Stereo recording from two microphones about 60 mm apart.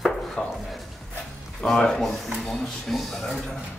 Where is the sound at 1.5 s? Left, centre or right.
Centre.